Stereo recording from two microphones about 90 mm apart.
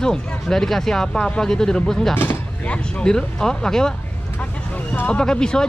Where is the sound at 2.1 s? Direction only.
15° left (ahead or behind).